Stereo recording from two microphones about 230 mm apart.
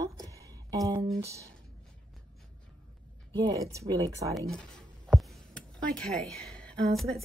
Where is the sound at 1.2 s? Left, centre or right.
Centre.